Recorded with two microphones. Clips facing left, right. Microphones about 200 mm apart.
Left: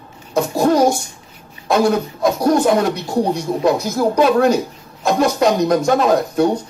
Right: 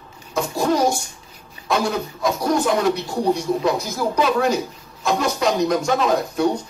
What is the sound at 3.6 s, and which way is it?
Speech, 45° left (ahead or behind).